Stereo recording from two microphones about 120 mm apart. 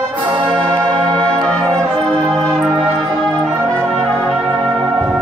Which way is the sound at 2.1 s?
5° left (ahead or behind).